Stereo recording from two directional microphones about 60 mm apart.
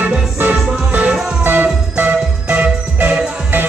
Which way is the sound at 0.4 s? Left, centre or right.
Right.